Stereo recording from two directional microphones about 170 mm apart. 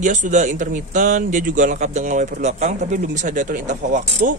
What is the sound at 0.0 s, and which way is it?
Speech, 45° right (ahead or behind).